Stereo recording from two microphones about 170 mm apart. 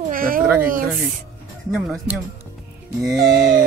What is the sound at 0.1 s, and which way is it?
Cat, 55° right (ahead or behind).